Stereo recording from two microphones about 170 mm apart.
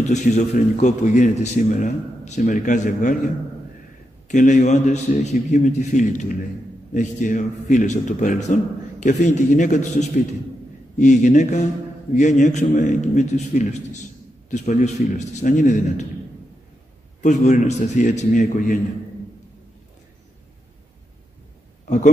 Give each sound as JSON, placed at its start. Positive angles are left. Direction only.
{"t": 0.0, "sound": "a man's voice", "side_deg": 45}
{"t": 4.3, "sound": "a man's voice", "side_deg": 45}
{"t": 17.2, "sound": "a man's voice", "side_deg": 45}
{"t": 21.8, "sound": "speech", "side_deg": 45}